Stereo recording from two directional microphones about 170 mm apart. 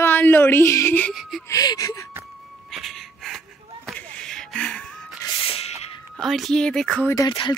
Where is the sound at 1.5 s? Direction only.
20° left (ahead or behind).